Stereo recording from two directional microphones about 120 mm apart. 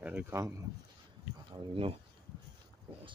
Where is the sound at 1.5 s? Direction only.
45° right (ahead or behind).